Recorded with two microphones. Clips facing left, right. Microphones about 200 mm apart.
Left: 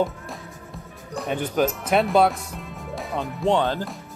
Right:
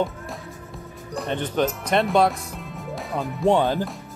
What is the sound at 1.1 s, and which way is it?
Speech, 5° left (ahead or behind).